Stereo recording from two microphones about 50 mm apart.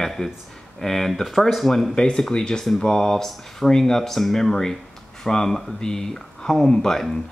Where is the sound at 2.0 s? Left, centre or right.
Centre.